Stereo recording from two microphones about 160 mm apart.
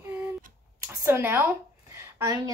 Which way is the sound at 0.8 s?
15° right (ahead or behind).